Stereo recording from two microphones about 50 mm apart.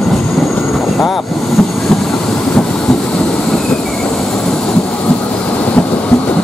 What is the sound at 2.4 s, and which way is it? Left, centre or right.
Train, centre.